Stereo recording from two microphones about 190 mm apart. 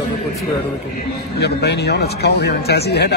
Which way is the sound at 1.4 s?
60° left (ahead or behind).